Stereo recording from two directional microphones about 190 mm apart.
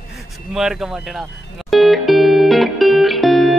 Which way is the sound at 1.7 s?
Centre (ahead or behind).